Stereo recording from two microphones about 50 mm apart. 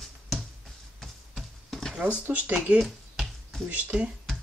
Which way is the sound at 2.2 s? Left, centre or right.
Right.